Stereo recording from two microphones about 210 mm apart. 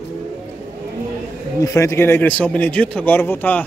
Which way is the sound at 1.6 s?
15° left (ahead or behind).